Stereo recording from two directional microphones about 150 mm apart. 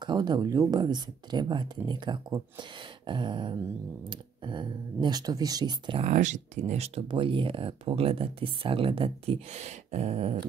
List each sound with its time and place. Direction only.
0.0 s speech: 30° right (ahead or behind)
6.0 s speech: 50° right (ahead or behind)